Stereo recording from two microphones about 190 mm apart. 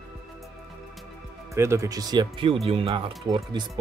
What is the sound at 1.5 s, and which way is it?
Speech, 15° right (ahead or behind).